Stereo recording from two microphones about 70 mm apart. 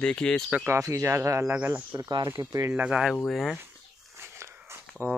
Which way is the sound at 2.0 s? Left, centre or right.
Right.